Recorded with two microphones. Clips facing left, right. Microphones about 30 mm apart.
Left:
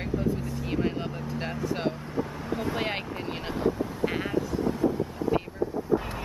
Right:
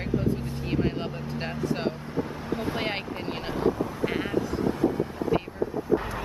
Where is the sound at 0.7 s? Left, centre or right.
Centre.